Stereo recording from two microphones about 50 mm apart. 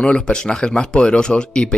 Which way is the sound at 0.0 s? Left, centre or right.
Centre.